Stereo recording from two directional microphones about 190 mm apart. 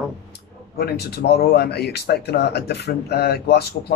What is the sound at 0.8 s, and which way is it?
Speech, 55° left (ahead or behind).